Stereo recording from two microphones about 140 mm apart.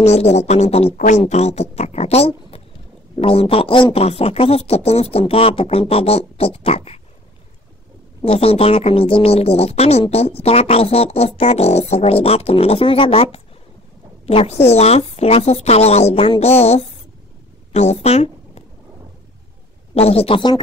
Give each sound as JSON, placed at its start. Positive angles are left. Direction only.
{"t": 0.0, "sound": "speech", "side_deg": 50}
{"t": 0.9, "sound": "speech", "side_deg": 65}
{"t": 1.2, "sound": "a woman's voice", "side_deg": 50}
{"t": 8.3, "sound": "a woman's voice", "side_deg": 45}
{"t": 19.9, "sound": "speech", "side_deg": 45}